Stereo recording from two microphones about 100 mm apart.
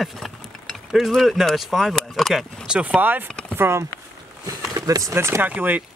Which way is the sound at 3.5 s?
25° right (ahead or behind).